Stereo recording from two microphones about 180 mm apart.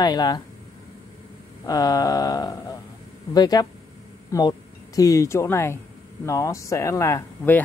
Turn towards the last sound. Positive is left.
turn(degrees=15)  # may be behind; listen again after turning